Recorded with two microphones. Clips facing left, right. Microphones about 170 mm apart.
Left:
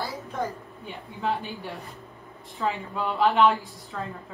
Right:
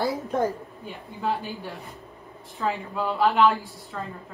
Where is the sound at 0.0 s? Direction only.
20° right (ahead or behind).